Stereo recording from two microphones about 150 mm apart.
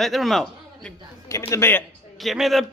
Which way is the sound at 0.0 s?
Centre (ahead or behind).